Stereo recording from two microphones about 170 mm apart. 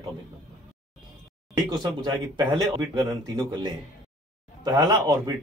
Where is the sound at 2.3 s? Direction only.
20° right (ahead or behind).